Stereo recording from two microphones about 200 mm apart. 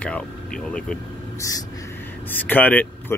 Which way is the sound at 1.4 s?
20° left (ahead or behind).